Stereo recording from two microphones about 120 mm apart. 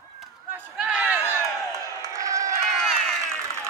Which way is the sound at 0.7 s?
5° right (ahead or behind).